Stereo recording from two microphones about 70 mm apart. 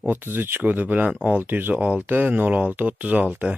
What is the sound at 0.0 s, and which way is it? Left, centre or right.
Speech, right.